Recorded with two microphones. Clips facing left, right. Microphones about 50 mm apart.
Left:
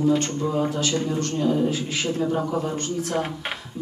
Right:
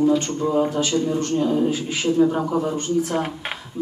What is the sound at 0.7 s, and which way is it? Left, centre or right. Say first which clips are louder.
A man's voice: right 3 dB; right.